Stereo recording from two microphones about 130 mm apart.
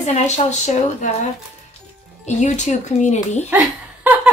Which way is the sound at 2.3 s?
65° left (ahead or behind).